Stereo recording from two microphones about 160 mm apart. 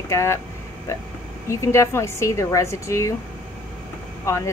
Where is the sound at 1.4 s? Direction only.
20° left (ahead or behind).